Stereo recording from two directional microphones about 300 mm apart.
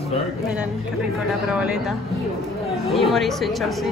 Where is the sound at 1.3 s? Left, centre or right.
Centre.